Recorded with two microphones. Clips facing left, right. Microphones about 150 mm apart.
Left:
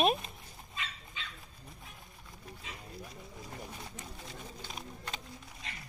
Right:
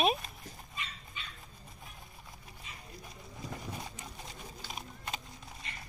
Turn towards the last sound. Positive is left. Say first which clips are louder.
# left 1 dB
turn(degrees=90)